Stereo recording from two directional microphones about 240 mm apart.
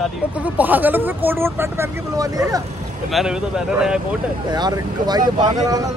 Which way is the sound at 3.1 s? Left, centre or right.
Centre.